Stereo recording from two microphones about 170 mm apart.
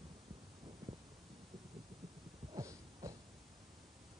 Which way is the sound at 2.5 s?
20° right (ahead or behind).